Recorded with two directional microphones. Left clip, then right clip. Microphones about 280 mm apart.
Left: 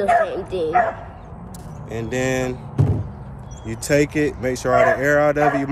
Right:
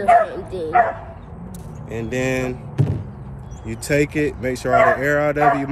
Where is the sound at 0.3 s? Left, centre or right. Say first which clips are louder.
Left 4 dB; left.